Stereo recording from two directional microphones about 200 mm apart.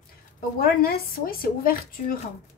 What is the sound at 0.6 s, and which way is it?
A woman's voice, 50° left (ahead or behind).